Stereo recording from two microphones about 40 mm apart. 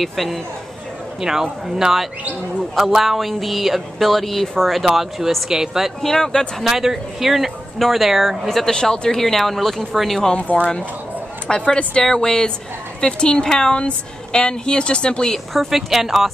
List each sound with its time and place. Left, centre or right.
0.0 s speech: centre
1.2 s speech: centre
6.0 s speech: centre
6.6 s speech: centre
8.5 s speech: centre
9.1 s speech: centre
10.5 s speech: left
11.4 s a woman's voice: centre
15.3 s speech: centre
15.7 s speech: centre